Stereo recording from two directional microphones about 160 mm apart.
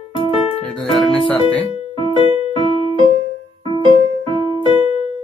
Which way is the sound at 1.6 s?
30° left (ahead or behind).